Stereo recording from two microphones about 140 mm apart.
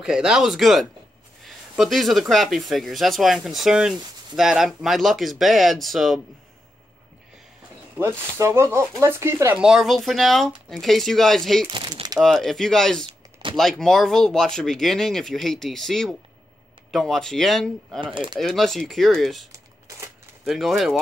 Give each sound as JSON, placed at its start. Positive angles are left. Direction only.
{"t": 0.0, "sound": "speech", "side_deg": -5}
{"t": 8.0, "sound": "speech", "side_deg": -20}
{"t": 9.6, "sound": "speech", "side_deg": -5}
{"t": 11.7, "sound": "speech", "side_deg": -35}
{"t": 12.2, "sound": "speech", "side_deg": 0}
{"t": 13.0, "sound": "computer keyboard", "side_deg": -35}
{"t": 13.6, "sound": "speech", "side_deg": 5}
{"t": 18.0, "sound": "speech", "side_deg": -35}
{"t": 18.4, "sound": "speech", "side_deg": 0}
{"t": 19.5, "sound": "typing", "side_deg": -20}
{"t": 20.4, "sound": "speech", "side_deg": 0}